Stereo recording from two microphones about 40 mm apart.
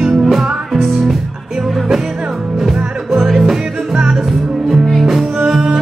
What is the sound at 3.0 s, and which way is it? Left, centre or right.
Music, centre.